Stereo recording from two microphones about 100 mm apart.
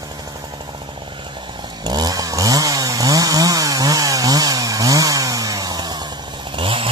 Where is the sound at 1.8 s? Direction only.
40° right (ahead or behind).